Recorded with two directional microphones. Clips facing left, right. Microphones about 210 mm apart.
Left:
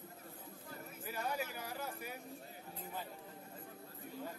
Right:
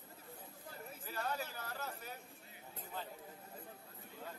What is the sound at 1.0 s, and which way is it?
Speech, 10° left (ahead or behind).